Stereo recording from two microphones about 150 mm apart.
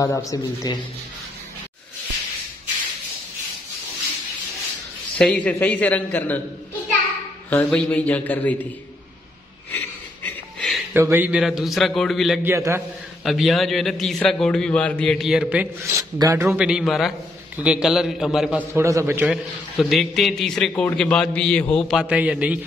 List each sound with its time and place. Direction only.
0.0 s a man's voice: 20° left (ahead or behind)
5.1 s a man's voice: 5° left (ahead or behind)
7.4 s a man's voice: 10° left (ahead or behind)
9.7 s a sound: 10° left (ahead or behind)
10.9 s a man's voice: 15° right (ahead or behind)
12.4 s a man's voice: 15° right (ahead or behind)
13.2 s a man's voice: centre (ahead or behind)
15.9 s speech: 25° right (ahead or behind)
16.4 s a man's voice: 5° right (ahead or behind)
18.7 s a man's voice: 20° right (ahead or behind)
19.3 s a man's voice: centre (ahead or behind)
21.9 s a man's voice: 10° right (ahead or behind)